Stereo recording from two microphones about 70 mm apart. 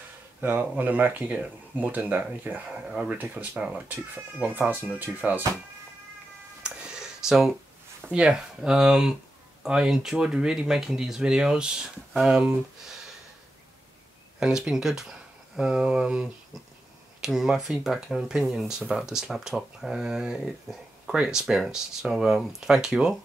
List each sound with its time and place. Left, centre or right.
0.4 s speech: right
6.6 s a sound: centre
8.1 s speech: centre
14.4 s speech: centre